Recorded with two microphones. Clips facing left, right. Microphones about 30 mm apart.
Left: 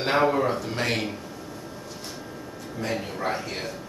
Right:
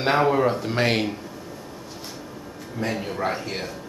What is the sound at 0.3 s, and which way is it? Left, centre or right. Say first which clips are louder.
Speech: right 3 dB; centre.